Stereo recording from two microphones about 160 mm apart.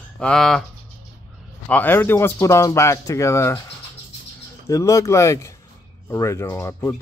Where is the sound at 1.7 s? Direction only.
10° left (ahead or behind).